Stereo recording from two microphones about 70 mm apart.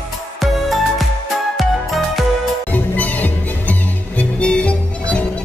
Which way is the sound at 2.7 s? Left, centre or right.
Left.